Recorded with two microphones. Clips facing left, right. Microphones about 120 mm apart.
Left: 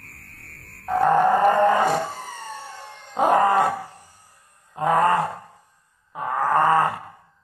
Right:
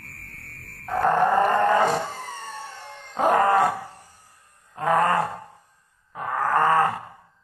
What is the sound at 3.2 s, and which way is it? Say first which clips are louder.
Speech: left 1 dB; 15° left (ahead or behind).